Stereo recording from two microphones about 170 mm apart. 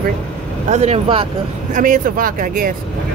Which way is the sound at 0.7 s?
40° right (ahead or behind).